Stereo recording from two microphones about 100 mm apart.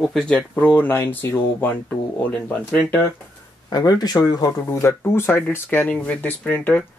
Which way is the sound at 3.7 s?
40° left (ahead or behind).